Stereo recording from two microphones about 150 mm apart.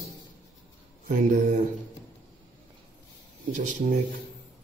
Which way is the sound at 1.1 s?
55° right (ahead or behind).